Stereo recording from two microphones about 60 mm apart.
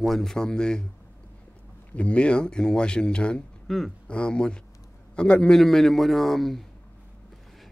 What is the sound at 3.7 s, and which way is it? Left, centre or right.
Speech, centre.